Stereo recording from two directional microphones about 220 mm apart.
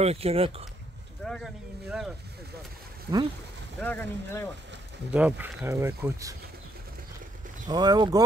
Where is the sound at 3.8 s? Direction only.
10° left (ahead or behind).